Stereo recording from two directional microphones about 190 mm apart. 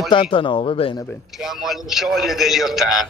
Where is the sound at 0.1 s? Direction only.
25° left (ahead or behind).